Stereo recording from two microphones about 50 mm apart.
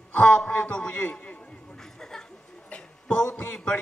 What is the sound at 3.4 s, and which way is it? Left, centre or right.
Speech, left.